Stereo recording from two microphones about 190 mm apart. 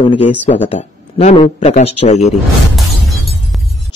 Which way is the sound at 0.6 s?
40° left (ahead or behind).